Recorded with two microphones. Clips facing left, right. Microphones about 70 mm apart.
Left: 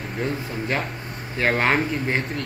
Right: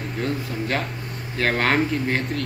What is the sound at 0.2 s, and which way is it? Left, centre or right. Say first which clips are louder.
Speech: even; centre.